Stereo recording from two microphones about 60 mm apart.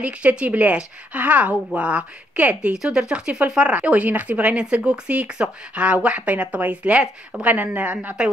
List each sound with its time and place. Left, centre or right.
0.0 s speech: right
2.7 s speech: centre; by 8.2 s right